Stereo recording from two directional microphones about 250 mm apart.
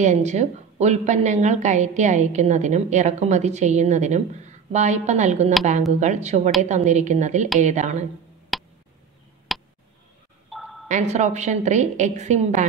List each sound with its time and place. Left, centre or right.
0.0 s a woman's voice: right
8.5 s a sound: centre
10.9 s a woman's voice: right